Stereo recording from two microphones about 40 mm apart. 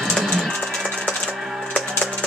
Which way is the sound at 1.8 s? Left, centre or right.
Centre.